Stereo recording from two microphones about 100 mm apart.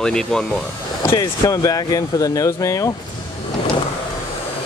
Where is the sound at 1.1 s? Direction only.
40° left (ahead or behind).